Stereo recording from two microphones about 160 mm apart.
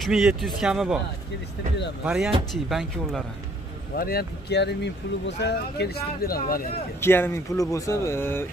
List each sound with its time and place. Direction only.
0.0 s speech: 5° right (ahead or behind)
2.0 s speech: 5° right (ahead or behind)
3.9 s speech: 75° left (ahead or behind)
7.0 s speech: 15° left (ahead or behind)